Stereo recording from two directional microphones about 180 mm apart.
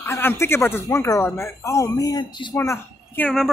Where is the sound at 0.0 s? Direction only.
10° left (ahead or behind).